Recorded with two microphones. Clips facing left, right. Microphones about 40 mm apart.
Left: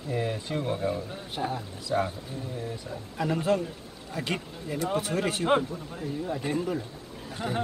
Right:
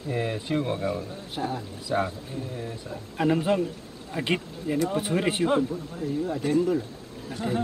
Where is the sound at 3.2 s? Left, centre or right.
Right.